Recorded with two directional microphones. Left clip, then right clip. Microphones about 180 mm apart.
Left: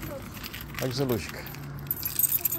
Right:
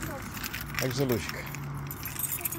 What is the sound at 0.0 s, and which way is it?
Keys jangling, 10° left (ahead or behind).